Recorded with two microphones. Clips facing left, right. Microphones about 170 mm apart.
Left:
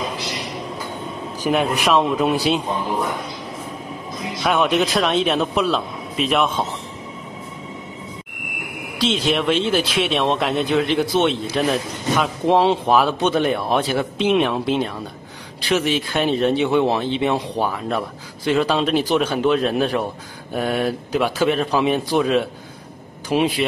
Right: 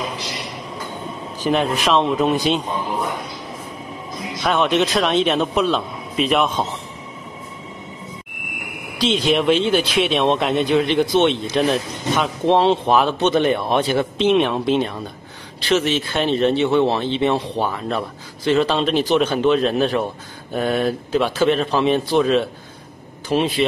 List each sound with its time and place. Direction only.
1.4 s speech: 10° left (ahead or behind)
4.4 s speech: 5° left (ahead or behind)
9.0 s a man's voice: centre (ahead or behind)